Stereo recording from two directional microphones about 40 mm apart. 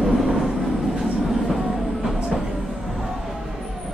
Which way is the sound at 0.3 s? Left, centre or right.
Centre.